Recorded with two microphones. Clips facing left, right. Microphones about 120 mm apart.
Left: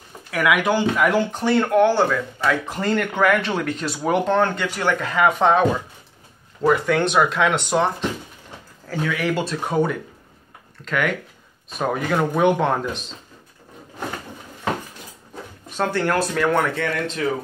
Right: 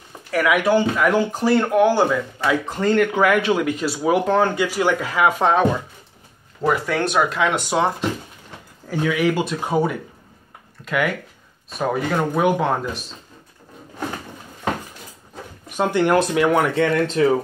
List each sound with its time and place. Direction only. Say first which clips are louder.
0.3 s speech: right 2 dB; centre (ahead or behind)
2.7 s speech: right 4 dB; 5° left (ahead or behind)
3.3 s speech: right 2 dB; 10° right (ahead or behind)
8.8 s speech: right 4 dB; 15° right (ahead or behind)
11.8 s speech: even; centre (ahead or behind)
15.7 s speech: right 4 dB; 15° right (ahead or behind)
16.7 s speech: right 6 dB; 30° right (ahead or behind)